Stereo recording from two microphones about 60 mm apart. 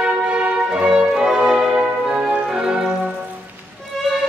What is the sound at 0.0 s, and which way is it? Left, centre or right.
Music, centre.